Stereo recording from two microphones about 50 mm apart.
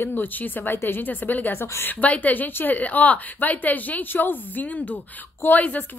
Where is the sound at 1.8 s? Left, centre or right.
Left.